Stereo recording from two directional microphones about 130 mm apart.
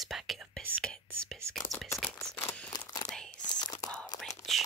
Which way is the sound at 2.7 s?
30° left (ahead or behind).